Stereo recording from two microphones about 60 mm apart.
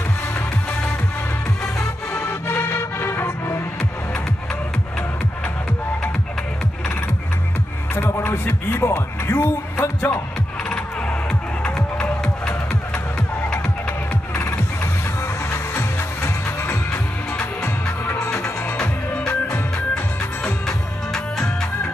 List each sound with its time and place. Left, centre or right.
2.1 s music: left
8.1 s speech: left
11.6 s music: centre
15.5 s music: left
18.0 s music: left
20.6 s music: centre